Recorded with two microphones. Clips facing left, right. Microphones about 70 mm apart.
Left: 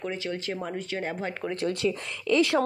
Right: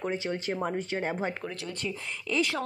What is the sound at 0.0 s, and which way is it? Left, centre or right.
Speech, right.